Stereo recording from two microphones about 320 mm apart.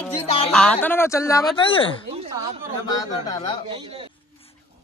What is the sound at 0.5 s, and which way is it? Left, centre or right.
Speech, centre.